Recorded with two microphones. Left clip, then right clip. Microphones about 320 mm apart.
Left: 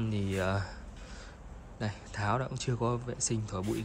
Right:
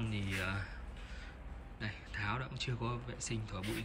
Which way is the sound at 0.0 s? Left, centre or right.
Centre.